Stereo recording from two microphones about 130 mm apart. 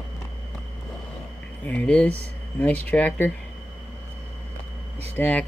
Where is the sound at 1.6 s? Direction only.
10° left (ahead or behind).